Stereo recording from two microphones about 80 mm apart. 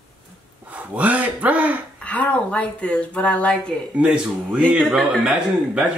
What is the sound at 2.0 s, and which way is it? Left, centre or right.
Speech, centre.